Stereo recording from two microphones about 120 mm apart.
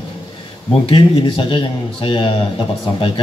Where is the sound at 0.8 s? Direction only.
45° left (ahead or behind).